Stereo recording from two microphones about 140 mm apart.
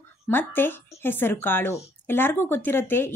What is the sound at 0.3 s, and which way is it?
Speech, 15° left (ahead or behind).